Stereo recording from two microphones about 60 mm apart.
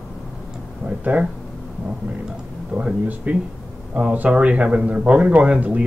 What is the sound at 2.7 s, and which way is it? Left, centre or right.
Speech, right.